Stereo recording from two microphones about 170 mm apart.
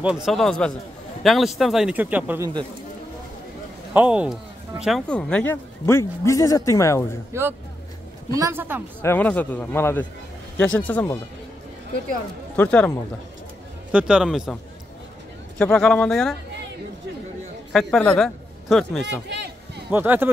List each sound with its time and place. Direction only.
0.0 s a man's voice: centre (ahead or behind)
3.9 s speech: 10° right (ahead or behind); by 7.2 s 15° left (ahead or behind)
8.3 s a woman's voice: 20° right (ahead or behind)
9.0 s speech: 10° left (ahead or behind)
12.5 s speech: 10° left (ahead or behind)
13.9 s a man's voice: 5° right (ahead or behind)
17.7 s a man's voice: 5° left (ahead or behind)
19.2 s a sound: 90° right
19.9 s a woman's voice: 10° right (ahead or behind)